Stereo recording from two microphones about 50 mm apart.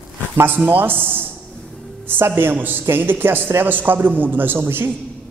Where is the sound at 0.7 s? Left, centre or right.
Right.